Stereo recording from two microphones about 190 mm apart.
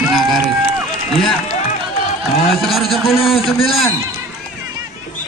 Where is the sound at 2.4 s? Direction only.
Centre (ahead or behind).